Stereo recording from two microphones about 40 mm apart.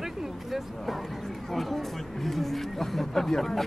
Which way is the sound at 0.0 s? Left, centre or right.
Centre.